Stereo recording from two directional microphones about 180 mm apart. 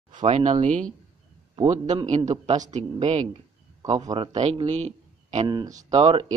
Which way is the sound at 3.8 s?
20° right (ahead or behind).